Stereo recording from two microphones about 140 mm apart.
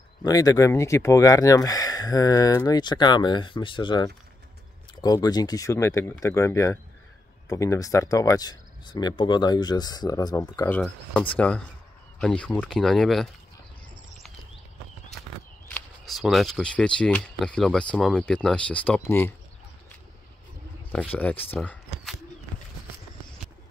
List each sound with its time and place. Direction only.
0.2 s speech: 25° left (ahead or behind)
10.7 s speech: 10° left (ahead or behind)
16.1 s speech: centre (ahead or behind); by 19.3 s 15° left (ahead or behind)
20.9 s speech: 10° left (ahead or behind)